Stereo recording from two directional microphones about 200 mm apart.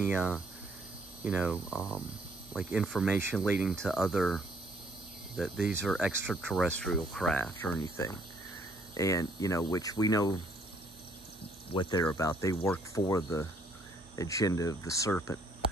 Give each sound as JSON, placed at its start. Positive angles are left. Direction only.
{"t": 0.1, "sound": "speech", "side_deg": -5}
{"t": 5.4, "sound": "speech", "side_deg": -5}
{"t": 8.9, "sound": "speech", "side_deg": 15}
{"t": 11.7, "sound": "speech", "side_deg": 20}